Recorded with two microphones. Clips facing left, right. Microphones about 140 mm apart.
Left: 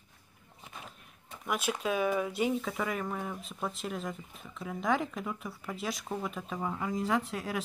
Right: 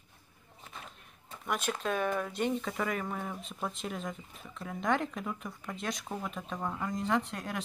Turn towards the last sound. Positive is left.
turn(degrees=5)  # may be behind; listen again after turning